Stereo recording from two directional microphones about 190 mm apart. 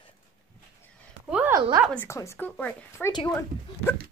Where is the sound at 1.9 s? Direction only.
10° left (ahead or behind).